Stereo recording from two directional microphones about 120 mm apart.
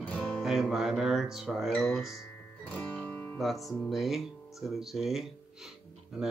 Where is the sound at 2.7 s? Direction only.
15° left (ahead or behind).